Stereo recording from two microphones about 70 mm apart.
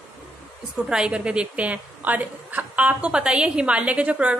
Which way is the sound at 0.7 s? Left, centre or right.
Centre.